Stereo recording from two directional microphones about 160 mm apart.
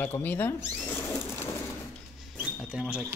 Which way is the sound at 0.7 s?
10° left (ahead or behind).